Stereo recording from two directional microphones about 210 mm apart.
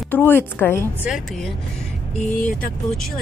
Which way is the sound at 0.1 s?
10° left (ahead or behind).